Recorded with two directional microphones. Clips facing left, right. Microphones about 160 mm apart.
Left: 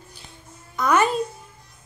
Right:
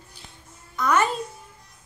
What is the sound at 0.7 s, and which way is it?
Speech, 15° left (ahead or behind).